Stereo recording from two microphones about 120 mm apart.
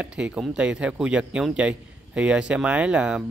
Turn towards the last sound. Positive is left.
turn(degrees=-5)  # may be behind; listen again after turning